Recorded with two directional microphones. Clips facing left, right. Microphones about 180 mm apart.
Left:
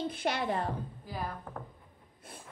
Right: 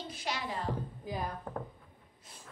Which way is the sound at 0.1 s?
55° left (ahead or behind).